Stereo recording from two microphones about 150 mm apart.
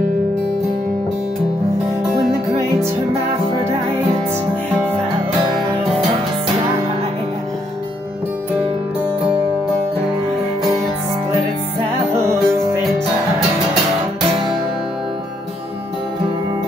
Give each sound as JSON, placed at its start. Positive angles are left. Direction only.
{"t": 12.2, "sound": "music", "side_deg": -20}